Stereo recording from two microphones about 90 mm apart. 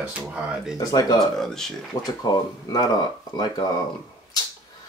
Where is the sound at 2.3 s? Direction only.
50° left (ahead or behind).